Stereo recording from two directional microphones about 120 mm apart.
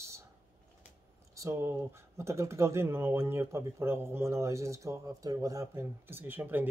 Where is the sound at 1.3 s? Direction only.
25° right (ahead or behind).